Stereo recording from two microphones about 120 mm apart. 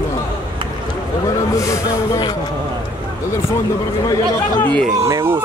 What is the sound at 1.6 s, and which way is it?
Speech, 25° left (ahead or behind).